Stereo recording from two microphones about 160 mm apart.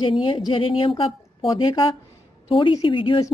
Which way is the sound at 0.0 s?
30° left (ahead or behind).